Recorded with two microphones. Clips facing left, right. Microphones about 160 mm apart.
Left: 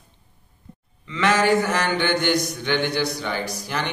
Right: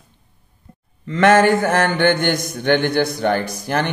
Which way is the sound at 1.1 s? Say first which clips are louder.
Right 6 dB; 50° right (ahead or behind).